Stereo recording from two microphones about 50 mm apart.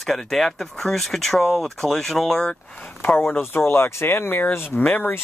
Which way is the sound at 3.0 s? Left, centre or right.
Left.